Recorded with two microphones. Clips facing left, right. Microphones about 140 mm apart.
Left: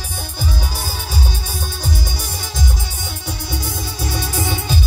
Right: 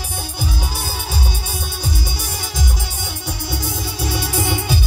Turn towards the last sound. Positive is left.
turn(degrees=-15)  # may be behind; listen again after turning